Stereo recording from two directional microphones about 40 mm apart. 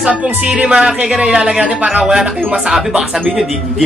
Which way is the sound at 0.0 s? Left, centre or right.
Right.